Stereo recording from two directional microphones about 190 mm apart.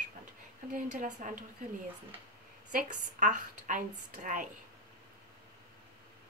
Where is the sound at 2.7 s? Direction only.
40° right (ahead or behind).